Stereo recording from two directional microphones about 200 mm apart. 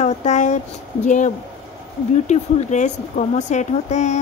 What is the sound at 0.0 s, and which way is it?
Speech, 35° left (ahead or behind).